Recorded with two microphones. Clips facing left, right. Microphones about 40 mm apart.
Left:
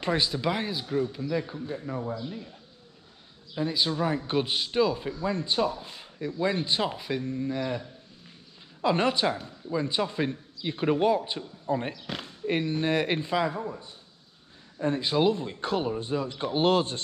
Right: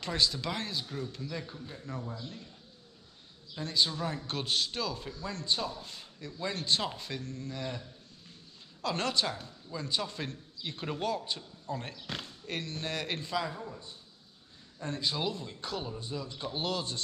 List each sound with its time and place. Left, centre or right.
0.0 s a man's voice: left
3.5 s a man's voice: centre; by 17.0 s left